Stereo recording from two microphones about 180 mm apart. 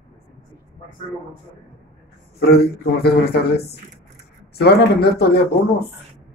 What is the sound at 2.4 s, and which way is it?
Speech, 60° left (ahead or behind).